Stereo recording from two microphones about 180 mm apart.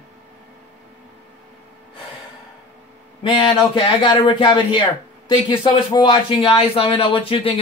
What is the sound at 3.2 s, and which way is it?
Speech, 30° left (ahead or behind).